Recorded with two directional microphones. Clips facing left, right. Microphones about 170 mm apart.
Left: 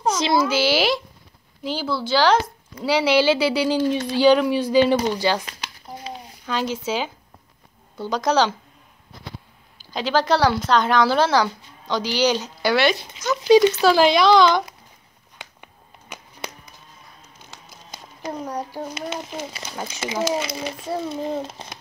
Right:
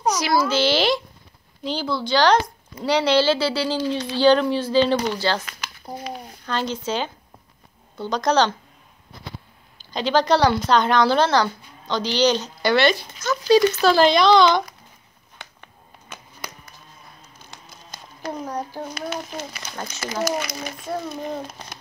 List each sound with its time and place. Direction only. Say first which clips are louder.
0.0 s a sound: left 1 dB; 25° left (ahead or behind)
0.5 s a woman's voice: even; 5° left (ahead or behind)
5.4 s a sound: even; 35° left (ahead or behind)
6.4 s a woman's voice: left 1 dB; 5° left (ahead or behind)
9.8 s speech: right 1 dB; 5° left (ahead or behind)
13.3 s a woman's voice: left 2 dB; 15° left (ahead or behind)
15.3 s a sound: left 1 dB; 15° left (ahead or behind)
16.4 s music: left 3 dB; 25° left (ahead or behind)
17.5 s a sound: left 1 dB; 15° left (ahead or behind)
18.3 s speech: even; 5° right (ahead or behind)
18.9 s a child's voice: even; 20° left (ahead or behind)
19.7 s a woman's voice: left 2 dB; 10° left (ahead or behind)
20.2 s a child's voice: left 2 dB; 25° left (ahead or behind)